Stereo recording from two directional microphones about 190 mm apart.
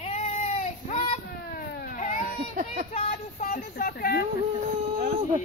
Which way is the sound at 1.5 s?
50° left (ahead or behind).